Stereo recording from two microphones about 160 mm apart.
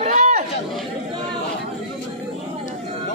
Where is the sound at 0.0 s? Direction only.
45° right (ahead or behind).